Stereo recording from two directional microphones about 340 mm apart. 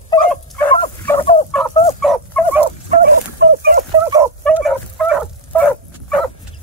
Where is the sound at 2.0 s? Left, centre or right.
Centre.